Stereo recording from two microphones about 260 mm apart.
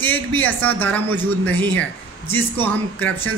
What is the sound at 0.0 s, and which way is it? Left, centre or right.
A man's voice, centre.